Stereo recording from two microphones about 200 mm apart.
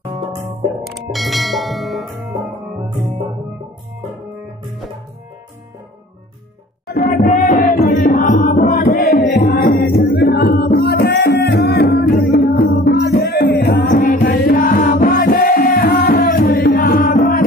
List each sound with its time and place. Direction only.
0.0 s music: 30° right (ahead or behind)
0.8 s music: centre (ahead or behind)
6.9 s music: 45° left (ahead or behind)